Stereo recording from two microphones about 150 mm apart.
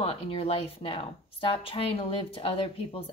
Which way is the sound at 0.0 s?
40° left (ahead or behind).